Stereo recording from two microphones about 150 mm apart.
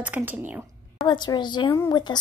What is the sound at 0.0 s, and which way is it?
Speech, 10° right (ahead or behind).